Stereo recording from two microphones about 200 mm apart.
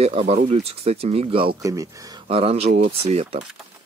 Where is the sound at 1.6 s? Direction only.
15° right (ahead or behind).